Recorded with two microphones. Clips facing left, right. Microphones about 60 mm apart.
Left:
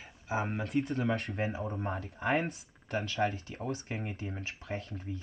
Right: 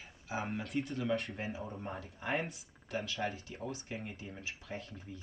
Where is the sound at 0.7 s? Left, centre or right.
Left.